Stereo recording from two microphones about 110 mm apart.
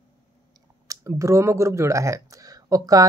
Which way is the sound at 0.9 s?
25° right (ahead or behind).